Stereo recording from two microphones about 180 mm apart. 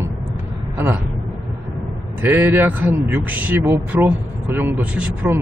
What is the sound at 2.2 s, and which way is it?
Speech, 10° right (ahead or behind).